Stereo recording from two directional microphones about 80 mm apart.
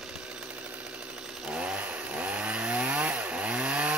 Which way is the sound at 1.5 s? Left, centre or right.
Centre.